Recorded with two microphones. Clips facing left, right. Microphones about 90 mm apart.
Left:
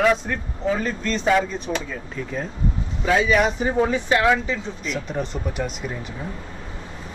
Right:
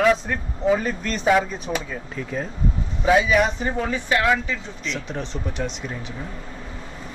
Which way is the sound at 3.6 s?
15° left (ahead or behind).